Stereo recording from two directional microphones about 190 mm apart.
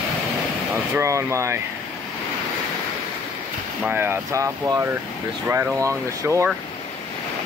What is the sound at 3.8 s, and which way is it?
Speech, 10° right (ahead or behind).